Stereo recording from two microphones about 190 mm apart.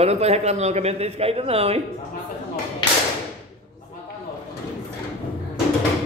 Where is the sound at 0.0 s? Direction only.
35° right (ahead or behind).